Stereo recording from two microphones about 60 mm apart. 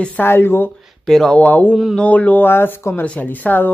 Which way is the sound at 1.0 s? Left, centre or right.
Centre.